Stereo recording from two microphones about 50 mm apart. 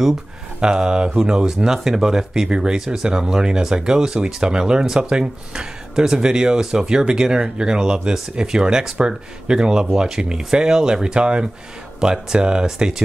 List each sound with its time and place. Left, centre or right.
0.6 s speech: centre